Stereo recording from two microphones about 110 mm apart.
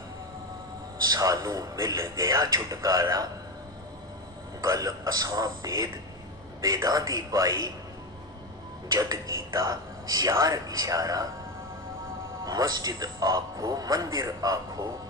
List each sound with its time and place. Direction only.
1.0 s a man's voice: 35° right (ahead or behind)
4.6 s a man's voice: 35° right (ahead or behind)
8.9 s a man's voice: 35° right (ahead or behind)
12.4 s a man's voice: 35° right (ahead or behind)